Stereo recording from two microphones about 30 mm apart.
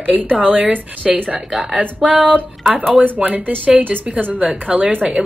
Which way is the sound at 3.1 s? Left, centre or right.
Right.